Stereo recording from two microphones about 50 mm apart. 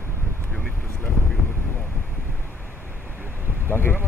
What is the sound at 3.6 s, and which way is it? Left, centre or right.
Speech, left.